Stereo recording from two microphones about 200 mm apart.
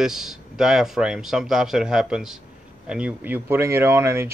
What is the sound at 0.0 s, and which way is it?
Speech, centre (ahead or behind).